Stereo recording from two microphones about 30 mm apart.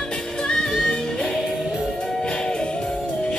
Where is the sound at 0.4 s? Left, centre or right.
Left.